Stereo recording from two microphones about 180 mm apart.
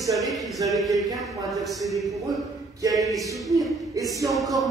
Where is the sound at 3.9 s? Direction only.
20° right (ahead or behind).